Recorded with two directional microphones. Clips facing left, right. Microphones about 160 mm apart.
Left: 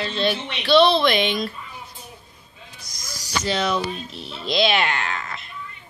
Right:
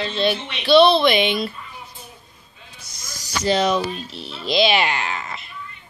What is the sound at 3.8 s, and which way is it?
Speech, centre (ahead or behind).